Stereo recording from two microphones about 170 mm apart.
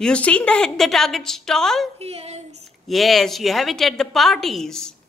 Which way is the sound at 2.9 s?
Centre (ahead or behind).